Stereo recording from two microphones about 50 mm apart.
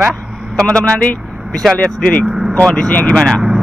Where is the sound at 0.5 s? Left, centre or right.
Centre.